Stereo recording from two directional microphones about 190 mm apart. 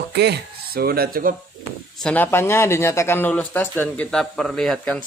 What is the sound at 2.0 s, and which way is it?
Speech, 10° left (ahead or behind).